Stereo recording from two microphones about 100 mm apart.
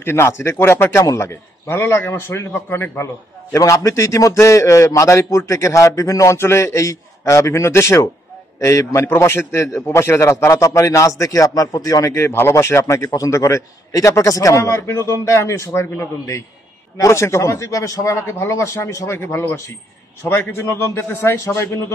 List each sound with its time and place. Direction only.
0.0 s a man's voice: 25° left (ahead or behind)